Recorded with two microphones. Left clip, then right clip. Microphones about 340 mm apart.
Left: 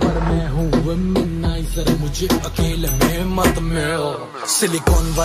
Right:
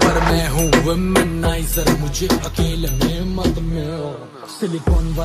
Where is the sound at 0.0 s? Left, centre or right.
Right.